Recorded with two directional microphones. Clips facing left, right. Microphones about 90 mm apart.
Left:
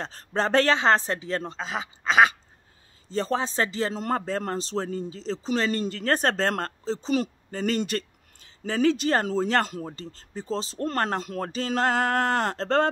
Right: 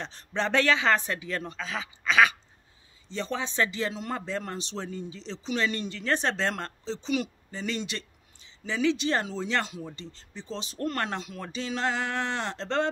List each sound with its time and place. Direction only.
0.0 s speech: 40° left (ahead or behind)